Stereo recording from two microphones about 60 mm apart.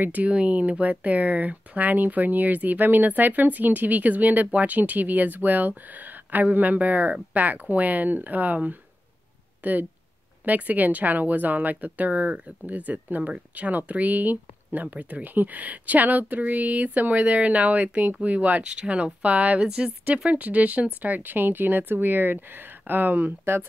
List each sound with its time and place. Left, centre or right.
0.0 s speech: right